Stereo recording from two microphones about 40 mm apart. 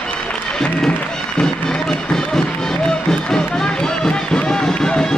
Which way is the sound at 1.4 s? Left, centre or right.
Centre.